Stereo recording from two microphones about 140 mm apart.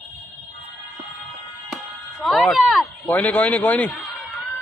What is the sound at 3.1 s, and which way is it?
Speech, 10° left (ahead or behind).